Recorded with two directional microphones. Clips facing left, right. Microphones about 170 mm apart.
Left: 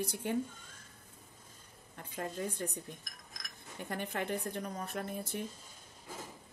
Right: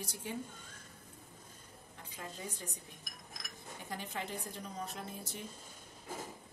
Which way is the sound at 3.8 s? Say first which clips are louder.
Left 5 dB; 55° left (ahead or behind).